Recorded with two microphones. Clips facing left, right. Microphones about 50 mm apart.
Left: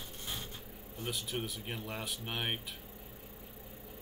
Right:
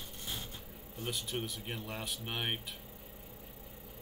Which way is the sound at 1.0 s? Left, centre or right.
Centre.